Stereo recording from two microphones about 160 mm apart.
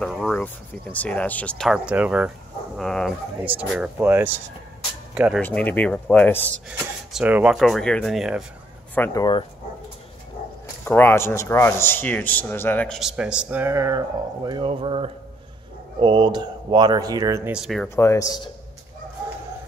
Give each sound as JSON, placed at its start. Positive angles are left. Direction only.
{"t": 0.0, "sound": "speech", "side_deg": 0}
{"t": 1.7, "sound": "speech", "side_deg": -5}
{"t": 2.8, "sound": "speech", "side_deg": 5}
{"t": 3.5, "sound": "speech", "side_deg": -10}
{"t": 5.4, "sound": "speech", "side_deg": 10}
{"t": 7.1, "sound": "speech", "side_deg": -5}
{"t": 8.9, "sound": "speech", "side_deg": 15}
{"t": 10.9, "sound": "speech", "side_deg": 15}
{"t": 17.5, "sound": "speech", "side_deg": 0}
{"t": 17.8, "sound": "speech", "side_deg": 15}